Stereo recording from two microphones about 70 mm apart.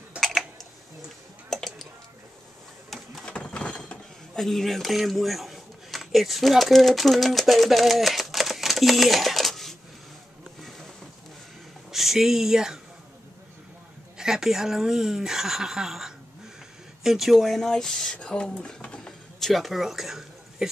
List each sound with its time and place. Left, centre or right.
0.2 s typing: centre
1.5 s music: centre
3.3 s a sound: centre
4.4 s a man's voice: centre
11.9 s speech: centre
14.1 s speech: centre
19.4 s speech: centre